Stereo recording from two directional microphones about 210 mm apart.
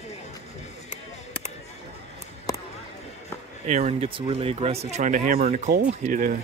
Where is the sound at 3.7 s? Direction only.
30° right (ahead or behind).